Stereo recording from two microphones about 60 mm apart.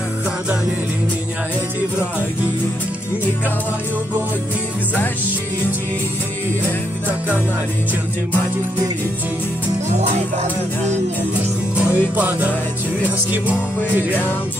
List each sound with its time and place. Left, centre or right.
11.7 s music: right